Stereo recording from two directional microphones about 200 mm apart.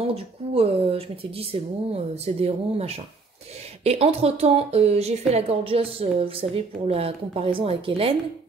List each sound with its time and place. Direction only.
0.0 s a woman's voice: 30° right (ahead or behind)